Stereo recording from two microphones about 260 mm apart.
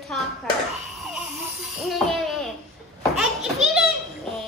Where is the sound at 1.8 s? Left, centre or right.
Centre.